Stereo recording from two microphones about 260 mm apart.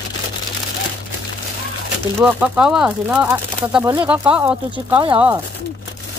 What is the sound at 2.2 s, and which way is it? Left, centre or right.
Speech, centre.